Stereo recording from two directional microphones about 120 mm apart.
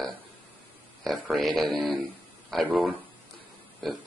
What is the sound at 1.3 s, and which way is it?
Speech, centre (ahead or behind).